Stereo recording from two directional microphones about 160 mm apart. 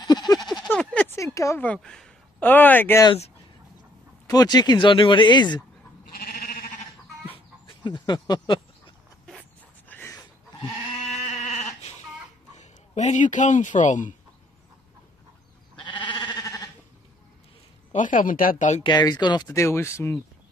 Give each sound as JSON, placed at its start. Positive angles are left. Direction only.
{"t": 0.0, "sound": "a sound", "side_deg": 25}
{"t": 0.7, "sound": "a sound", "side_deg": 10}
{"t": 1.7, "sound": "speech", "side_deg": 5}
{"t": 4.3, "sound": "speech", "side_deg": 25}
{"t": 6.1, "sound": "sheep", "side_deg": 70}
{"t": 7.3, "sound": "chicken", "side_deg": 30}
{"t": 8.1, "sound": "speech", "side_deg": 30}
{"t": 9.8, "sound": "a sound", "side_deg": 10}
{"t": 11.2, "sound": "sheep", "side_deg": 45}
{"t": 12.5, "sound": "speech", "side_deg": 45}
{"t": 15.8, "sound": "sheep", "side_deg": 30}
{"t": 17.9, "sound": "speech", "side_deg": 55}
{"t": 18.8, "sound": "speech", "side_deg": 30}